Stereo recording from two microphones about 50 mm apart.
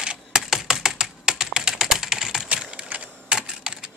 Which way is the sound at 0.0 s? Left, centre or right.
Centre.